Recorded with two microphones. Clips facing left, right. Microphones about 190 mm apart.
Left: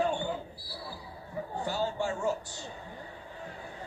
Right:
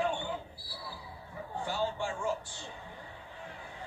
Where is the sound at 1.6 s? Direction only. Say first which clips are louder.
Left 2 dB; 40° left (ahead or behind).